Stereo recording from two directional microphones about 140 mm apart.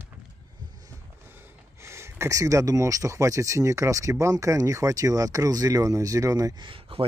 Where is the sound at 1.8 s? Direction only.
20° right (ahead or behind).